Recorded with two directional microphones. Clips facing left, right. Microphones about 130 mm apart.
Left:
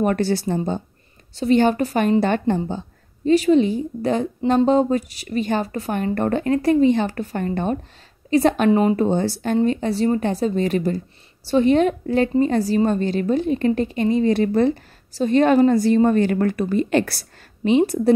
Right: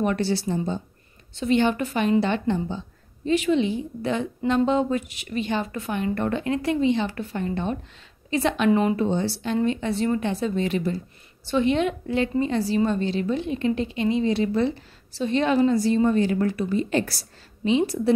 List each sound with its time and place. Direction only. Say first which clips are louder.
0.0 s a woman's voice: left 4 dB; 45° left (ahead or behind)
1.3 s a woman's voice: left 4 dB; 40° left (ahead or behind)